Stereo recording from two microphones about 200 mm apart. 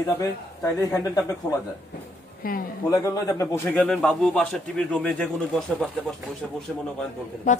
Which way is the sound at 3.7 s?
5° left (ahead or behind).